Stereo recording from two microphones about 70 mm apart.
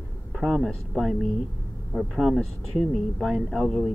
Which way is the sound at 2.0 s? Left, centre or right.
Centre.